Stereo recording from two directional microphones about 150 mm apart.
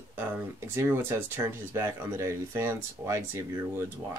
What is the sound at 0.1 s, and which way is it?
Speech, 15° right (ahead or behind).